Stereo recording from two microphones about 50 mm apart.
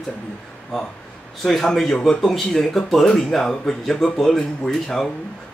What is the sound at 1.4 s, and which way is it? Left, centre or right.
Speech, centre.